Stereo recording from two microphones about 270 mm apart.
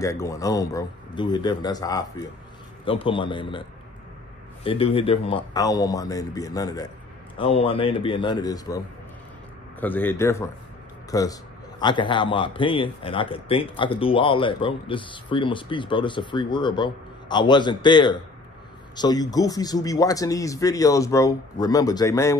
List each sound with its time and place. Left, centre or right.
0.0 s a man's voice: centre
4.6 s a man's voice: left